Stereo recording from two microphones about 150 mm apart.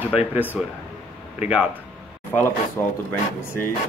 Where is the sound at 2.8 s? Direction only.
15° left (ahead or behind).